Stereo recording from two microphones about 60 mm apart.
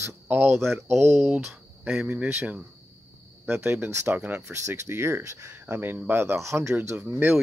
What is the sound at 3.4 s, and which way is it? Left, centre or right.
Speech, right.